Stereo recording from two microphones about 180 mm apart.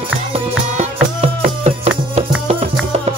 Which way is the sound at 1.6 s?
35° right (ahead or behind).